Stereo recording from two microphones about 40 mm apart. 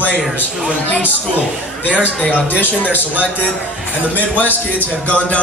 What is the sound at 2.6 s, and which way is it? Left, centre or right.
Speech, left.